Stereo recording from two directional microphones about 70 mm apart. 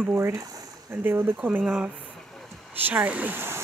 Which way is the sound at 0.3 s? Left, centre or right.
Right.